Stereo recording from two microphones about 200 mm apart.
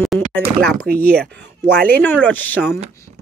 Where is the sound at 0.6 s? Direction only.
50° right (ahead or behind).